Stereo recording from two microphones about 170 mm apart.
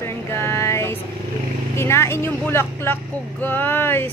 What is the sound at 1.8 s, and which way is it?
Speech, 15° left (ahead or behind).